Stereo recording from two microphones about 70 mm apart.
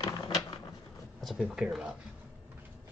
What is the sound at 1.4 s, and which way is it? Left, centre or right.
Speech, centre.